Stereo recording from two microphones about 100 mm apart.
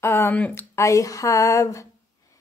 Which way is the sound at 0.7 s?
30° left (ahead or behind).